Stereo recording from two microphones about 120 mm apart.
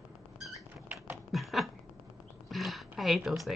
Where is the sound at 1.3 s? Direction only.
Centre (ahead or behind).